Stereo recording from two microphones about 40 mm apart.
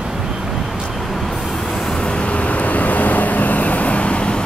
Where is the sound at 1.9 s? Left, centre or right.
Left.